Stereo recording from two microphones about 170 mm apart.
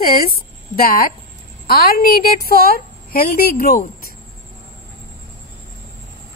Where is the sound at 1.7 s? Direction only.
65° left (ahead or behind).